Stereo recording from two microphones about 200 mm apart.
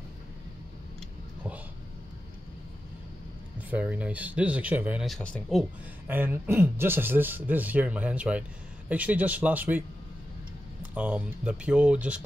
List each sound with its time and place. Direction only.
3.7 s speech: 5° right (ahead or behind)
6.0 s speech: 10° right (ahead or behind)
11.0 s speech: 5° right (ahead or behind)